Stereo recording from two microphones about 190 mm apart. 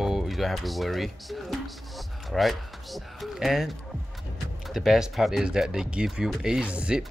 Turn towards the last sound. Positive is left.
turn(degrees=-5)  # may be behind; listen again after turning